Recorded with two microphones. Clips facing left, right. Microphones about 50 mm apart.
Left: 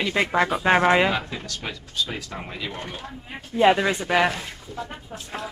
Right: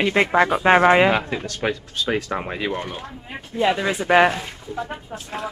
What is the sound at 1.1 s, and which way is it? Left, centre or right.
Speech, right.